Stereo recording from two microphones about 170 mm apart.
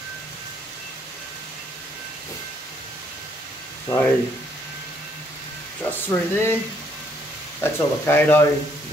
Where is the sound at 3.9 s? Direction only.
15° left (ahead or behind).